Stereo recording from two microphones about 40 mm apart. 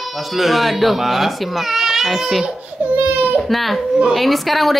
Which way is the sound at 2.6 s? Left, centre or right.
Right.